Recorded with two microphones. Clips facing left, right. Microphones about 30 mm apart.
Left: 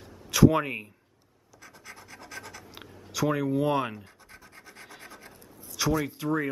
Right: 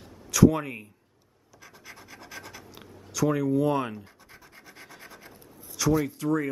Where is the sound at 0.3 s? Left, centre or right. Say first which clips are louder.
Even; left.